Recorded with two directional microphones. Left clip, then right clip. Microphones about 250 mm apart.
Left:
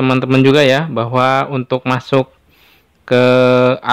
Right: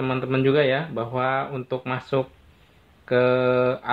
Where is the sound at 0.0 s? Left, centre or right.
Left.